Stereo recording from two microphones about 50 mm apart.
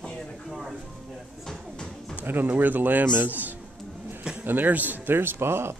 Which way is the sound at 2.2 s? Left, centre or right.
Right.